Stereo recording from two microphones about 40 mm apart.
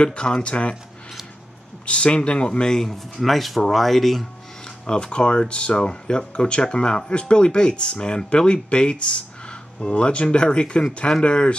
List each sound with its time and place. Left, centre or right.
0.0 s speech: left
1.9 s speech: left
2.8 s speech: centre
4.8 s speech: left